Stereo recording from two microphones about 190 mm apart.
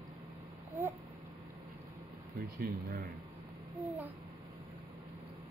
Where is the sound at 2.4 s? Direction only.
50° right (ahead or behind).